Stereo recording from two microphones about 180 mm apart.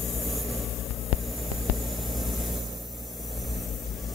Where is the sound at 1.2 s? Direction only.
Centre (ahead or behind).